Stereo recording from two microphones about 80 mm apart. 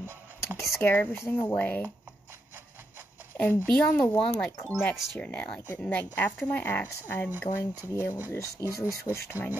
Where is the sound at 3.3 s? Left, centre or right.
Left.